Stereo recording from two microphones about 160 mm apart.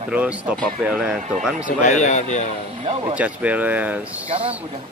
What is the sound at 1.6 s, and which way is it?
Speech, 50° left (ahead or behind).